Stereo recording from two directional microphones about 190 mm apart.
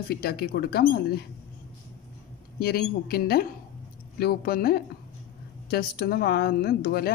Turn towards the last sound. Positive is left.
turn(degrees=55)  # may be behind; listen again after turning